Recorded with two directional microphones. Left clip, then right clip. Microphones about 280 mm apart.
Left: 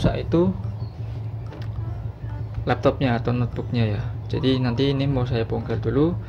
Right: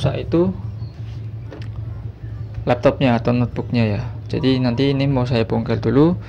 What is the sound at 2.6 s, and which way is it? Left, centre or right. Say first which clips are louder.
Speech: right 5 dB; centre.